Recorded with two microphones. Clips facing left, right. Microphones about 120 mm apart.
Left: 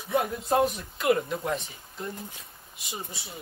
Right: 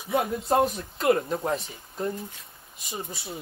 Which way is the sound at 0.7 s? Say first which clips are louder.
Right 2 dB; 30° right (ahead or behind).